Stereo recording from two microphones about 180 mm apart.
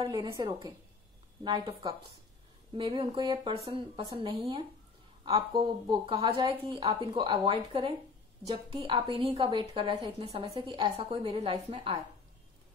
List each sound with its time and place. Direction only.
0.0 s a woman's voice: 25° right (ahead or behind)